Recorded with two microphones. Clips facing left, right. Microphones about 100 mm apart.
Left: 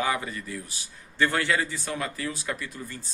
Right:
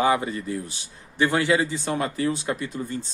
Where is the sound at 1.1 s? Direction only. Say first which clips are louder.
Right 4 dB; 15° right (ahead or behind).